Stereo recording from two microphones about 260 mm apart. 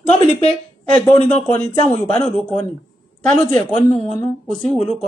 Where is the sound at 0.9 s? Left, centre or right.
Centre.